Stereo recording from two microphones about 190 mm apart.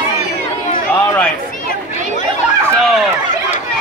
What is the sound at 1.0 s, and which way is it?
Speech, 10° left (ahead or behind).